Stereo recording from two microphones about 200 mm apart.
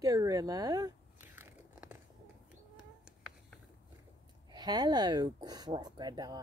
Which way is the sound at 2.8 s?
5° right (ahead or behind).